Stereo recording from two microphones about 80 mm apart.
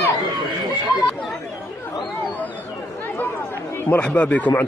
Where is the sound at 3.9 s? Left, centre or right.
Centre.